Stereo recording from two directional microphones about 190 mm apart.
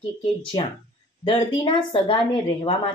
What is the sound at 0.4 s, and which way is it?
Speech, 25° left (ahead or behind).